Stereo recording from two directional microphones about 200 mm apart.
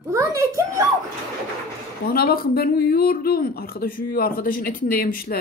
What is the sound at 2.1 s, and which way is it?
Speech, 50° left (ahead or behind).